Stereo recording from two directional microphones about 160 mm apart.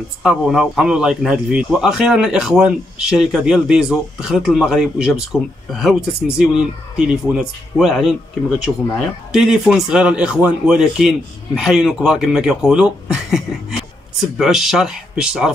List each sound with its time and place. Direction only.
0.2 s speech: 5° right (ahead or behind)